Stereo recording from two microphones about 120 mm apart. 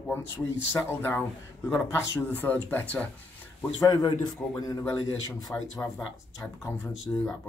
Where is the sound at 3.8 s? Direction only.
35° left (ahead or behind).